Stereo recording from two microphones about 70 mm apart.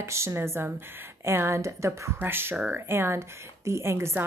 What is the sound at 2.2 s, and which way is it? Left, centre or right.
Speech, right.